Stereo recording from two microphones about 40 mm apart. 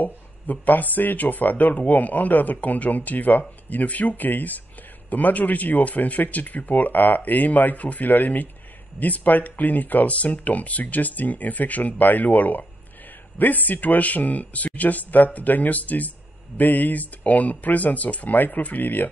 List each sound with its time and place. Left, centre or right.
0.0 s speech: left